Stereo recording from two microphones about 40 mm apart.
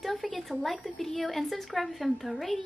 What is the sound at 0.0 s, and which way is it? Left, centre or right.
A woman's voice, centre.